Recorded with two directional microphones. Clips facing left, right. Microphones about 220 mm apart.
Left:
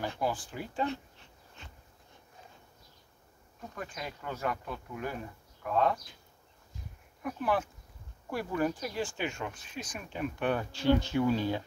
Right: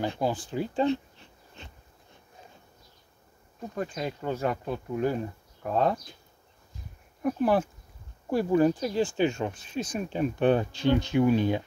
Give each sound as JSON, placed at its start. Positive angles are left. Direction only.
{"t": 0.0, "sound": "speech", "side_deg": -20}
{"t": 3.7, "sound": "speech", "side_deg": -30}
{"t": 7.2, "sound": "speech", "side_deg": -40}
{"t": 8.3, "sound": "speech", "side_deg": -25}